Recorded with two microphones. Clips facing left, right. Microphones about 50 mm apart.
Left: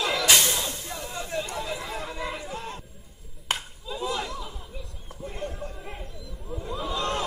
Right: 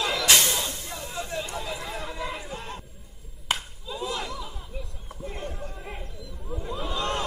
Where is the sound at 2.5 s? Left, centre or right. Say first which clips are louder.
Left 1 dB; right.